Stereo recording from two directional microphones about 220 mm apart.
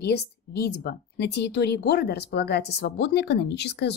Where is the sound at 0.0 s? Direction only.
50° left (ahead or behind).